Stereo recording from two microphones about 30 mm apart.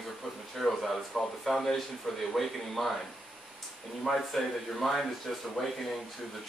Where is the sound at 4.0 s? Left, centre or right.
Centre.